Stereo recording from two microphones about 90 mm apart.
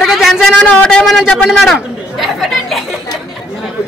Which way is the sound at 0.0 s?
Centre (ahead or behind).